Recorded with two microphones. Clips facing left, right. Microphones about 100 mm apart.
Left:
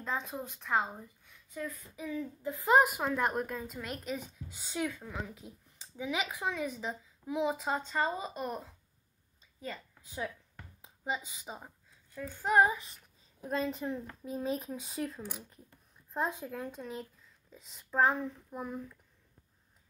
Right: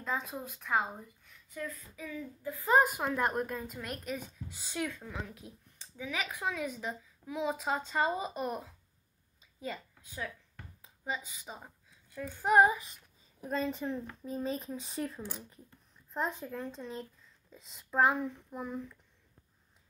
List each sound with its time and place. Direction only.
0.0 s a woman's voice: centre (ahead or behind)
1.5 s a woman's voice: 15° left (ahead or behind)
2.8 s a woman's voice: centre (ahead or behind)
5.9 s speech: 15° left (ahead or behind)
6.2 s a woman's voice: centre (ahead or behind)
10.8 s a sound: 20° left (ahead or behind)
11.5 s a sound: centre (ahead or behind)
12.4 s child singing: 20° right (ahead or behind)
13.4 s a woman's voice: centre (ahead or behind)
16.1 s speech: 15° left (ahead or behind)